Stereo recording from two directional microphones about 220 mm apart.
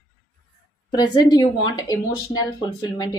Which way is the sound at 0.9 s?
20° left (ahead or behind).